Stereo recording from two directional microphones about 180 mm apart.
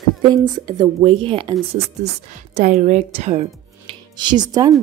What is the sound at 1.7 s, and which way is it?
A woman's voice, 40° right (ahead or behind).